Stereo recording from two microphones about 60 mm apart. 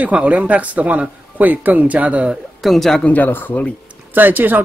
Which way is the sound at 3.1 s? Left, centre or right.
Left.